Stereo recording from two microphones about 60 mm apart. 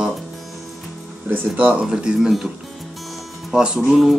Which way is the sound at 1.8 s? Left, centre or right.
Centre.